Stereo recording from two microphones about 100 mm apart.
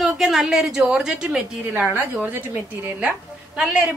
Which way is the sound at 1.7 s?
15° right (ahead or behind).